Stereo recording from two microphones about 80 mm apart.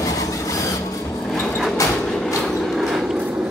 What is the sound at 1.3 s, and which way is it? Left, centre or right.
Sliding door, centre.